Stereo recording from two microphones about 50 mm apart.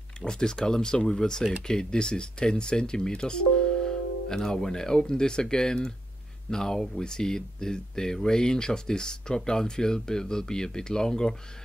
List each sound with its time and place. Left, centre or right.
0.2 s speech: centre